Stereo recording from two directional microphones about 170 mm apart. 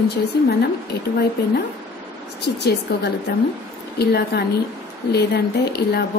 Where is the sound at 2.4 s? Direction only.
75° left (ahead or behind).